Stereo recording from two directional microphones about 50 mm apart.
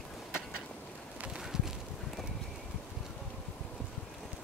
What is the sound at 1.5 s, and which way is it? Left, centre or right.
Clip-clop, centre.